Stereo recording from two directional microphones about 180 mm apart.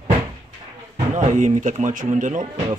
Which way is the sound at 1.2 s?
45° right (ahead or behind).